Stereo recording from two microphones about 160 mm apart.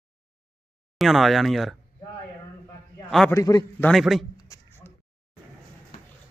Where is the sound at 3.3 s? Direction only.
20° left (ahead or behind).